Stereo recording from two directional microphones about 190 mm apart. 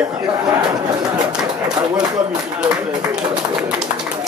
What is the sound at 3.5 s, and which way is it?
Pigeon, 10° right (ahead or behind).